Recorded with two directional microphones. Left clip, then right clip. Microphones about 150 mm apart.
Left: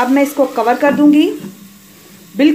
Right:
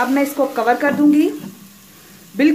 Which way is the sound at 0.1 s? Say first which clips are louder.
Left 5 dB; 15° left (ahead or behind).